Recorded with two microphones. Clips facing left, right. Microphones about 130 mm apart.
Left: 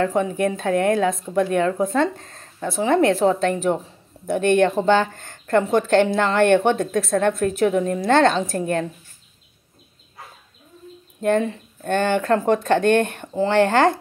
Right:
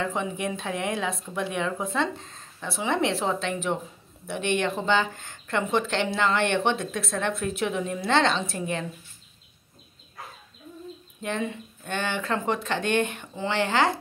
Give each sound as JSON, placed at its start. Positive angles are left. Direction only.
{"t": 0.0, "sound": "speech", "side_deg": 50}
{"t": 11.1, "sound": "speech", "side_deg": 45}